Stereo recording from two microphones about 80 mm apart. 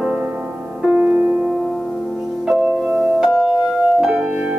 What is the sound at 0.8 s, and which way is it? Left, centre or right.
Music, right.